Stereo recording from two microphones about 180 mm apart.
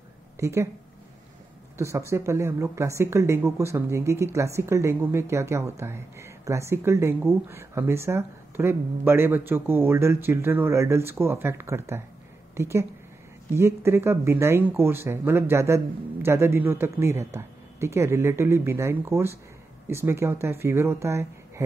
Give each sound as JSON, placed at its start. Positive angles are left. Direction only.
{"t": 0.4, "sound": "a woman's voice", "side_deg": -15}
{"t": 1.8, "sound": "a woman's voice", "side_deg": -15}